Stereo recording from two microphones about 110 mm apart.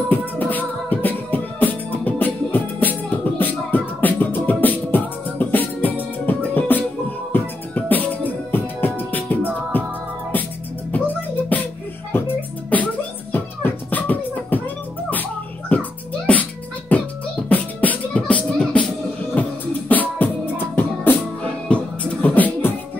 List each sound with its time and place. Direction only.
0.1 s music: 15° left (ahead or behind)
12.4 s beatboxing: 15° left (ahead or behind)
15.7 s music: 15° left (ahead or behind)
17.5 s beatboxing: 15° left (ahead or behind)
19.3 s music: 15° left (ahead or behind)